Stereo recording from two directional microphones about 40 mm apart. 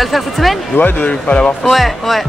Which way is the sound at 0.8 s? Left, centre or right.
Left.